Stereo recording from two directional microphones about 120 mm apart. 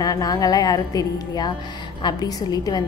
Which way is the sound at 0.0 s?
30° left (ahead or behind).